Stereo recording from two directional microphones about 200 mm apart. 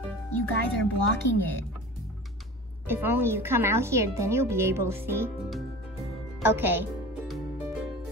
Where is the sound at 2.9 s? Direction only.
10° right (ahead or behind).